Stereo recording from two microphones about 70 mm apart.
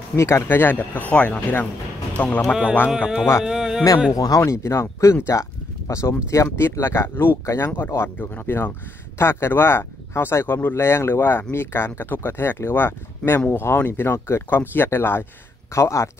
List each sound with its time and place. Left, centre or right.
0.1 s speech: left
0.5 s speech: left
2.9 s speech: centre
4.1 s speech: left
4.4 s speech: left
15.7 s speech: left